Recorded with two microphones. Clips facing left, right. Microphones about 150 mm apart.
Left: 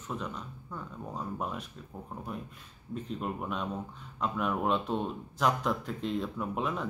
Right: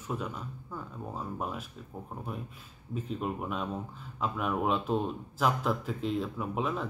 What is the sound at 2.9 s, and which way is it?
A man's voice, 5° right (ahead or behind).